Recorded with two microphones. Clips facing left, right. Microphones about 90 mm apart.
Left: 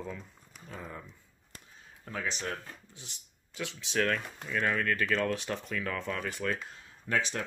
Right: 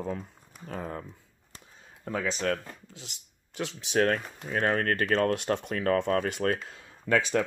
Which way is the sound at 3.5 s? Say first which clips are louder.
Right 5 dB; 55° right (ahead or behind).